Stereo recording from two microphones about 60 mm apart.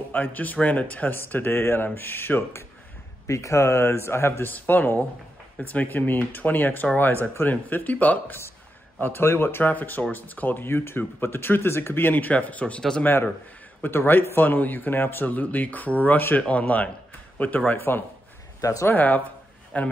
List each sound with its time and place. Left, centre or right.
0.1 s speech: left
3.3 s speech: left
9.0 s speech: left
9.7 s speech: left
13.0 s speech: left
17.7 s speech: left
18.6 s speech: left
18.9 s speech: left